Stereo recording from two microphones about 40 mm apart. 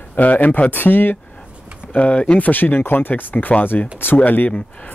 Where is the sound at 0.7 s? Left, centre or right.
Left.